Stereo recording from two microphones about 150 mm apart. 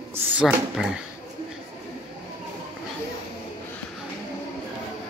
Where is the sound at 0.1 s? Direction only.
15° right (ahead or behind).